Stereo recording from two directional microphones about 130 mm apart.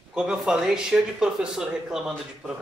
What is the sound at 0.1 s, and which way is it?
Speech, 5° right (ahead or behind).